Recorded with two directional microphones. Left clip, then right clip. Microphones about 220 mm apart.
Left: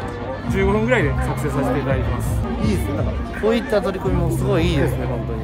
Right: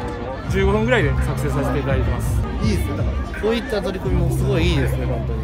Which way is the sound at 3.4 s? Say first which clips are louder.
Left 3 dB; 20° left (ahead or behind).